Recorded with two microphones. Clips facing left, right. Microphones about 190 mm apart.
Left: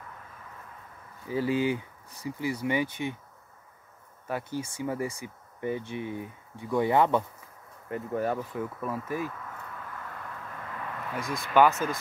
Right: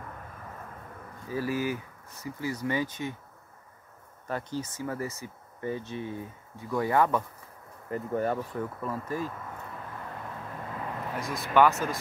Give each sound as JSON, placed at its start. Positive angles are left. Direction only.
{"t": 1.3, "sound": "speech", "side_deg": 20}
{"t": 4.3, "sound": "speech", "side_deg": 10}
{"t": 7.9, "sound": "speech", "side_deg": 5}
{"t": 9.8, "sound": "a sound", "side_deg": -20}
{"t": 11.1, "sound": "speech", "side_deg": 0}